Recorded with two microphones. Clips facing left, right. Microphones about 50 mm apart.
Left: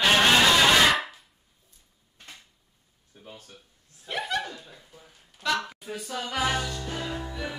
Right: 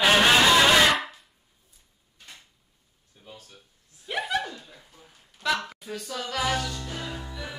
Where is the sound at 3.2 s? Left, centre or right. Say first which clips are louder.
Left 1 dB; left.